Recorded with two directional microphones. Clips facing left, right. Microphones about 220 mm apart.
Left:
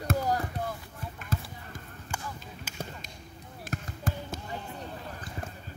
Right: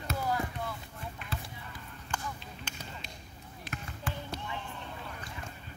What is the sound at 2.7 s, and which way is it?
Basketball bounce, 5° left (ahead or behind).